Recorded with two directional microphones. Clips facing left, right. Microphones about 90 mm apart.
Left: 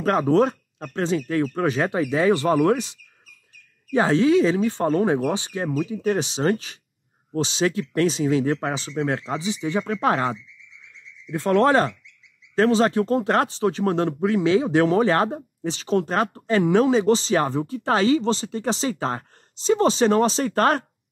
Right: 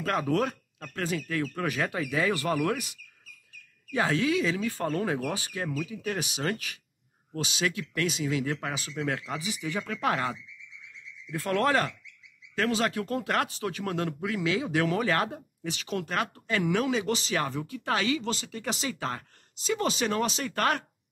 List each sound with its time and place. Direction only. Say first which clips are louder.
0.0 s speech: left 8 dB; 30° left (ahead or behind)